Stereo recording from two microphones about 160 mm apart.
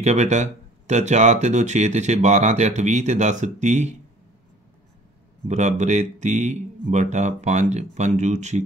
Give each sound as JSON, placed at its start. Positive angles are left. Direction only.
{"t": 0.0, "sound": "speech", "side_deg": -45}
{"t": 5.5, "sound": "speech", "side_deg": -45}